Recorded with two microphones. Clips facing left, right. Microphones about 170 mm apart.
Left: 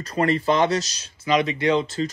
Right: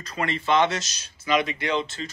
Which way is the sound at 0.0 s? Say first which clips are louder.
Left 7 dB; 35° left (ahead or behind).